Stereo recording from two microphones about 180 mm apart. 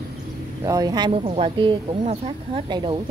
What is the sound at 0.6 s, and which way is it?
Speech, 20° right (ahead or behind).